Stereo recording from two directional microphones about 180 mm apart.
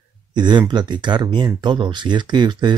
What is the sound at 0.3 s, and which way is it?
Speech, 25° right (ahead or behind).